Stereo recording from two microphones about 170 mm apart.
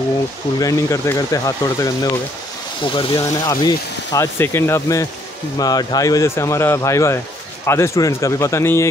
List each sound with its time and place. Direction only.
0.6 s speech: 20° left (ahead or behind)